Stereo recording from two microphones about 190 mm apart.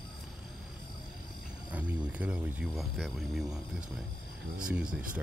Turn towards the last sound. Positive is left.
turn(degrees=-5)  # may be behind; listen again after turning